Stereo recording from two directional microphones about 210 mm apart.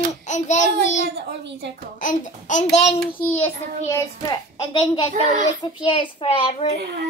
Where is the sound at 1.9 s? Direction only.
35° left (ahead or behind).